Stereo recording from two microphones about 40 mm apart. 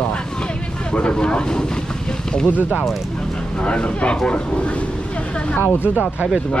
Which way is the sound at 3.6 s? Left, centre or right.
Left.